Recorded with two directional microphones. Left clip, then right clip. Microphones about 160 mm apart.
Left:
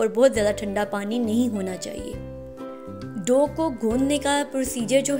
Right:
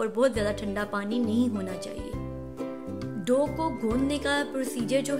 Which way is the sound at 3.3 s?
20° left (ahead or behind).